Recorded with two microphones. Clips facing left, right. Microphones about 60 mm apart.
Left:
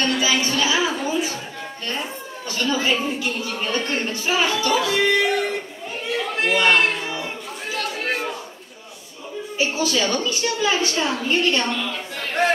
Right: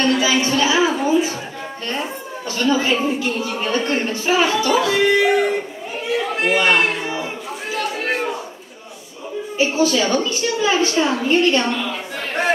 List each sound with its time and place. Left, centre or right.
0.0 s music: centre
2.5 s a woman's voice: centre
6.0 s chatter: centre
7.7 s a sound: centre
9.7 s a woman's voice: centre